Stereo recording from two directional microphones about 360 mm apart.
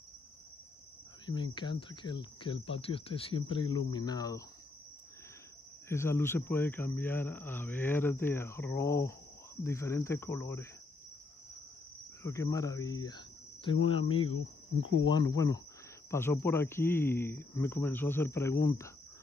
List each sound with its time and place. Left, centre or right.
1.2 s speech: centre
5.9 s speech: centre
12.2 s speech: centre
14.3 s cricket: left
15.0 s speech: centre